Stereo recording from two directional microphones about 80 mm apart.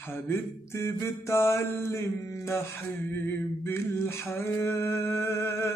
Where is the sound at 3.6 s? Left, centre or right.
Left.